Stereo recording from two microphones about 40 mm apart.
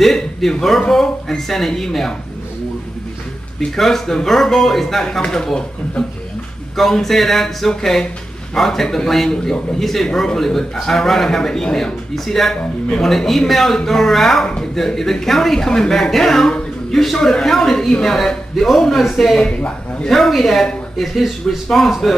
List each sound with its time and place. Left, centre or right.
0.0 s speech: centre
3.7 s speech: centre
6.8 s a man's voice: centre